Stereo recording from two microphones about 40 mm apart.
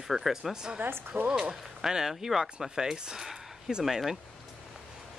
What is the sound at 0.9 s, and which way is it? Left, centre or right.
Speech, right.